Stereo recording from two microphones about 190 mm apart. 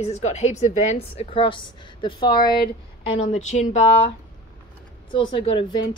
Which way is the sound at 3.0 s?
35° left (ahead or behind).